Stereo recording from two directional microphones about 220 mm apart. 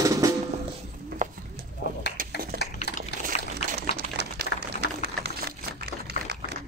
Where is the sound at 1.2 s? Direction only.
35° right (ahead or behind).